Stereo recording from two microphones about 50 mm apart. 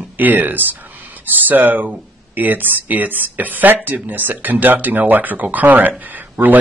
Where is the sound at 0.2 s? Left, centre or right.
Right.